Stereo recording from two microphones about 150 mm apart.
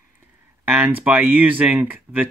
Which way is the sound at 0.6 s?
10° right (ahead or behind).